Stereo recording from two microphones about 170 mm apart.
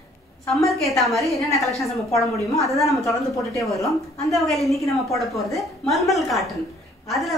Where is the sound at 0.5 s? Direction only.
Centre (ahead or behind).